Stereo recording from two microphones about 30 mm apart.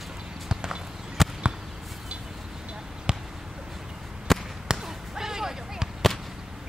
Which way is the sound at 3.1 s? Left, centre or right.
Right.